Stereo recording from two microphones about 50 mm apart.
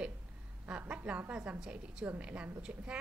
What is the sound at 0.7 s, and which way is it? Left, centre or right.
A woman's voice, right.